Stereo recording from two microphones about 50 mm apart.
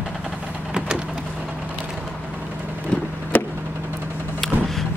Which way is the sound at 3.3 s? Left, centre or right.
Left.